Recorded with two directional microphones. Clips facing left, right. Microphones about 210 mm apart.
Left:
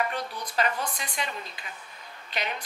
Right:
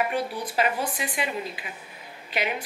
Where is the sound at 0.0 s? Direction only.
5° right (ahead or behind).